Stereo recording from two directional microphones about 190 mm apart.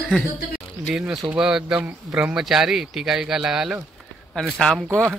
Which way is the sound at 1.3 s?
5° right (ahead or behind).